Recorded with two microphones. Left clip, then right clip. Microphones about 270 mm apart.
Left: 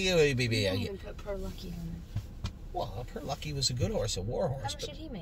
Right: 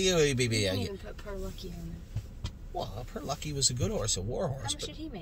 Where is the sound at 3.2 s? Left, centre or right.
Centre.